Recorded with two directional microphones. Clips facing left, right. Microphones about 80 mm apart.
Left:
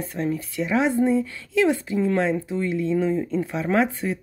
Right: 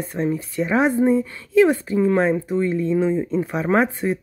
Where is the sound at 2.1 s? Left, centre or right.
Centre.